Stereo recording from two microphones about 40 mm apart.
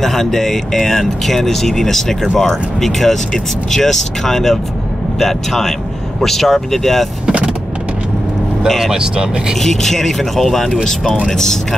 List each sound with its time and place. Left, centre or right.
0.0 s speech: centre
8.6 s speech: centre
8.9 s speech: centre
9.6 s speech: centre